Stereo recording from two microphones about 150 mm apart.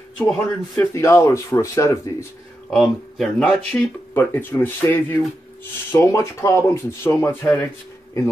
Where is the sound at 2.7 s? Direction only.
Centre (ahead or behind).